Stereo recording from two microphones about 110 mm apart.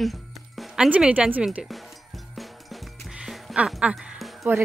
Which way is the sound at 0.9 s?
10° right (ahead or behind).